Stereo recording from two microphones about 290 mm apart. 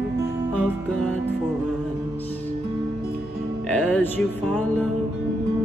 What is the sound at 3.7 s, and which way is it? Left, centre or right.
Music, centre.